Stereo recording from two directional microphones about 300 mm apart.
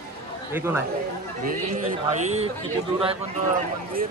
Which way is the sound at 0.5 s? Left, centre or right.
Centre.